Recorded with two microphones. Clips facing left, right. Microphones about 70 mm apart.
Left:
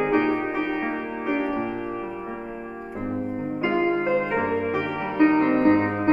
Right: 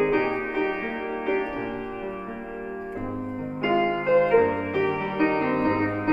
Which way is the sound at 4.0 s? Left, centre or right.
Centre.